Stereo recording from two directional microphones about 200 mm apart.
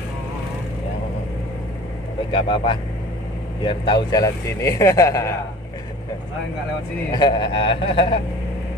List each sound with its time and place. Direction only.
2.3 s a man's voice: 25° left (ahead or behind)
7.1 s a man's voice: 20° left (ahead or behind)